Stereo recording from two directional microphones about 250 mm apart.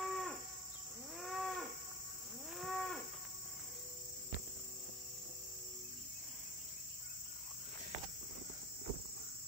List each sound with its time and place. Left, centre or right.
0.0 s livestock: centre
1.1 s cattle: centre
2.5 s moo: centre